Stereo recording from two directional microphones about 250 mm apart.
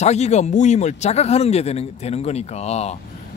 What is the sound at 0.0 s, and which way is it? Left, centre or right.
Speech, left.